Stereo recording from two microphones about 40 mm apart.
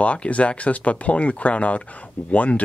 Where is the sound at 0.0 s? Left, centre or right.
Left.